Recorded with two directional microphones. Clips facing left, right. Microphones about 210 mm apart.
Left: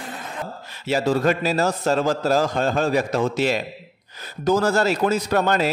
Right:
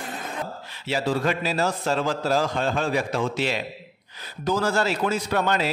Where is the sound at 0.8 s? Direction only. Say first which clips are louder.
Left 4 dB; 45° left (ahead or behind).